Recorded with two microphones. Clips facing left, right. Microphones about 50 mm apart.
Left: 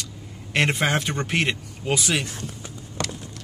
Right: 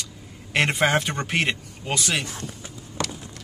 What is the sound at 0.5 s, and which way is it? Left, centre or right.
A man's voice, centre.